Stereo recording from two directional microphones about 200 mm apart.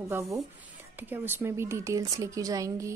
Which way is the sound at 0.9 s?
10° right (ahead or behind).